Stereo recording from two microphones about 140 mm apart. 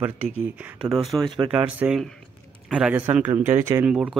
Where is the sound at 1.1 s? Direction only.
25° right (ahead or behind).